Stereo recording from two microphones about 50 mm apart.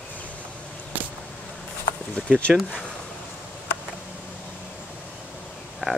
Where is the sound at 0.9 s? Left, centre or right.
Right.